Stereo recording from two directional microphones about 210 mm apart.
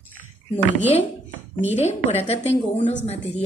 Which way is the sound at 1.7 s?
30° left (ahead or behind).